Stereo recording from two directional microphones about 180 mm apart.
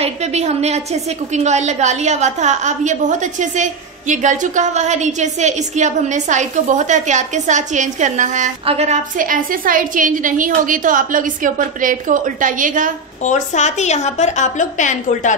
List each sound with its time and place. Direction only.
0.0 s a woman's voice: 35° right (ahead or behind)
13.2 s a woman's voice: 40° left (ahead or behind)